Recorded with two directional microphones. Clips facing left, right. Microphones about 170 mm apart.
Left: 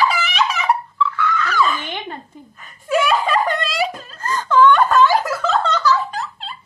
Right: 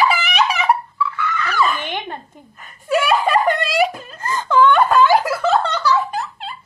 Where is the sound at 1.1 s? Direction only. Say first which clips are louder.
Left 2 dB; 5° right (ahead or behind).